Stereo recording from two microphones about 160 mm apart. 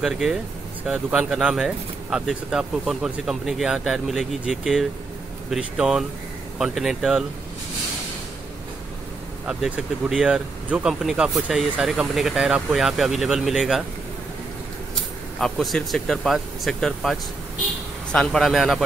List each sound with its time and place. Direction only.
0.0 s speech: centre (ahead or behind)
9.5 s speech: 5° right (ahead or behind)
15.4 s speech: centre (ahead or behind)